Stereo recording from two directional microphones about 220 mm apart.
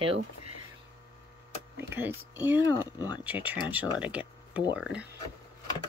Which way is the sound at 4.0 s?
5° right (ahead or behind).